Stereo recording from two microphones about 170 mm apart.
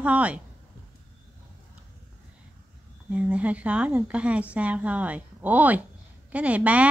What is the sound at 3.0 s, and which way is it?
A woman's voice, 10° right (ahead or behind).